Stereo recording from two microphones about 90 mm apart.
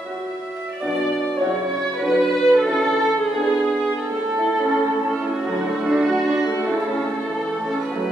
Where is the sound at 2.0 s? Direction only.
Centre (ahead or behind).